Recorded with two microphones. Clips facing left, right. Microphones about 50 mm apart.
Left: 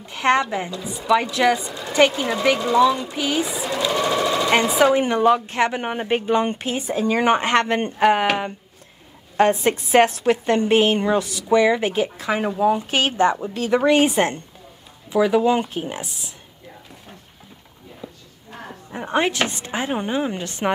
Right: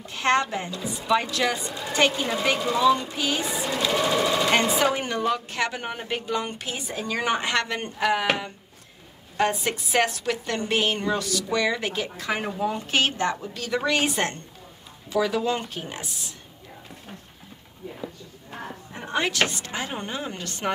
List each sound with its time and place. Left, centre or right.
0.0 s a woman's voice: left
1.0 s speech: centre
1.3 s speech: centre
2.2 s speech: centre
3.2 s speech: centre
4.5 s speech: centre
4.9 s a woman's voice: centre; by 8.3 s left
9.4 s a woman's voice: left
18.9 s a woman's voice: left